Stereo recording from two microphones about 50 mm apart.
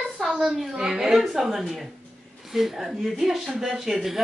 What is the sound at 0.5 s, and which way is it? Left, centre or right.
A woman's voice, centre.